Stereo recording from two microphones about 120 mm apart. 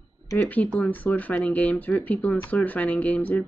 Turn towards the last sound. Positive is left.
turn(degrees=15)  # may be behind; listen again after turning